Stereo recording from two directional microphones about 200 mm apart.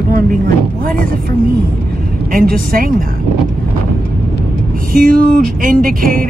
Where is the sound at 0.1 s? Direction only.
45° right (ahead or behind).